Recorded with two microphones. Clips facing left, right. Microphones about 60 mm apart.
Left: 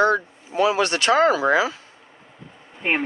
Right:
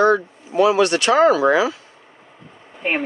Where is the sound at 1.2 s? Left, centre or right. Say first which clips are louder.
Right 5 dB; right.